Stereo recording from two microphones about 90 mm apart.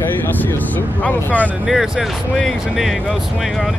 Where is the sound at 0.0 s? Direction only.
20° left (ahead or behind).